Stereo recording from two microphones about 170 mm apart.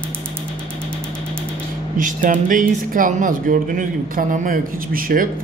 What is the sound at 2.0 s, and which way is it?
Speech, 50° right (ahead or behind).